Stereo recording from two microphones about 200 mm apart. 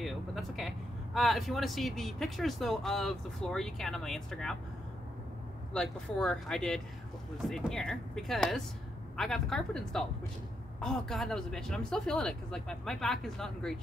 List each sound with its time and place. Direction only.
0.0 s speech: centre (ahead or behind)
5.7 s speech: 5° left (ahead or behind)